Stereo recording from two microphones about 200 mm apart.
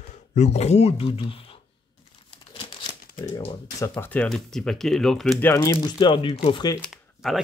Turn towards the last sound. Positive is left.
turn(degrees=0)  # may be behind; listen again after turning